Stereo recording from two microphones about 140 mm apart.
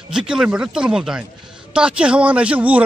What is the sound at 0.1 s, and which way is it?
A man's voice, 5° right (ahead or behind).